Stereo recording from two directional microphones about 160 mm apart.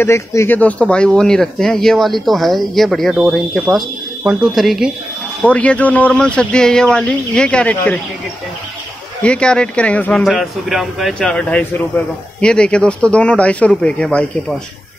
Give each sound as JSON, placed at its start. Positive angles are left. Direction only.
{"t": 0.0, "sound": "speech", "side_deg": 15}
{"t": 9.2, "sound": "speech", "side_deg": 5}